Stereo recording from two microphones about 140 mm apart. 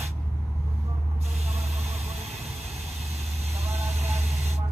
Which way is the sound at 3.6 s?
50° right (ahead or behind).